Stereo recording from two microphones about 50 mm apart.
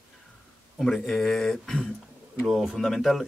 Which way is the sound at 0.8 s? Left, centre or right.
Centre.